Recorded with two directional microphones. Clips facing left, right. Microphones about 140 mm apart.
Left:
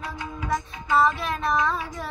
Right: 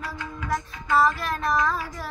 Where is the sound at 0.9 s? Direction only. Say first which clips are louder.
Even; centre (ahead or behind).